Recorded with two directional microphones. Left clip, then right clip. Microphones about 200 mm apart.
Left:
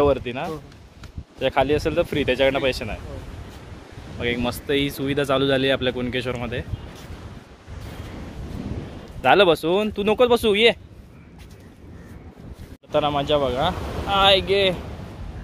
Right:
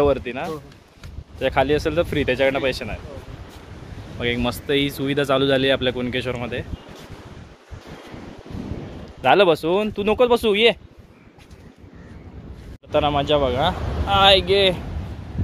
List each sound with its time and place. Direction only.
0.0 s speech: 10° left (ahead or behind)
4.2 s speech: 5° right (ahead or behind)
9.2 s speech: 5° left (ahead or behind)
12.9 s speech: 5° right (ahead or behind)